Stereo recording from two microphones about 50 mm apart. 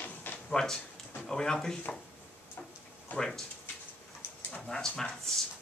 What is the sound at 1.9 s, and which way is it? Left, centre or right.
Speech, left.